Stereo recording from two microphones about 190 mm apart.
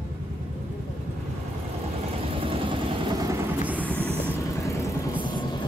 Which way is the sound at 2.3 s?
30° right (ahead or behind).